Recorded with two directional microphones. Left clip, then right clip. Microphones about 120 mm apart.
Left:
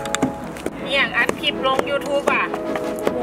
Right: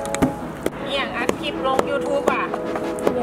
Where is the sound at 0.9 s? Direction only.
15° left (ahead or behind).